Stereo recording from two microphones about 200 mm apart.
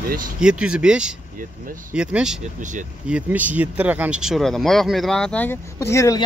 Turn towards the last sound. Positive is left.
turn(degrees=15)  # may be behind; listen again after turning